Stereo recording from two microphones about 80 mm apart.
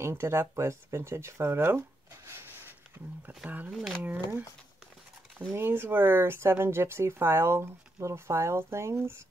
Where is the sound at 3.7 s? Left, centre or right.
Centre.